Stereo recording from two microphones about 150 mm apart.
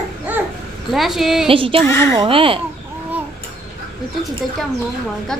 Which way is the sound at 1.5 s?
35° right (ahead or behind).